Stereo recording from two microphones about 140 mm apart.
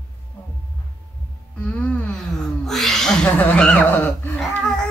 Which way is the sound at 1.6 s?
10° left (ahead or behind).